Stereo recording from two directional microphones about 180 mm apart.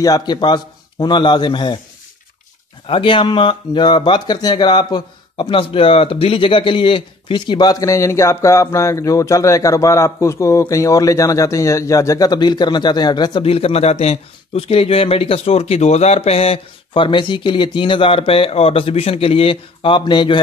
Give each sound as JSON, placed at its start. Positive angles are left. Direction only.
{"t": 0.0, "sound": "speech", "side_deg": 20}
{"t": 2.9, "sound": "speech", "side_deg": 30}